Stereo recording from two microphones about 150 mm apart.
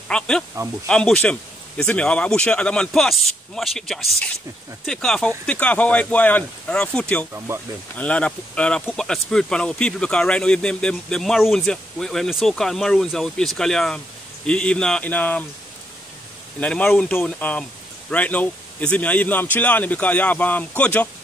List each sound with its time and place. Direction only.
0.1 s speech: 5° left (ahead or behind)
7.3 s speech: 20° right (ahead or behind)
7.9 s speech: 10° left (ahead or behind)
16.5 s speech: 10° left (ahead or behind)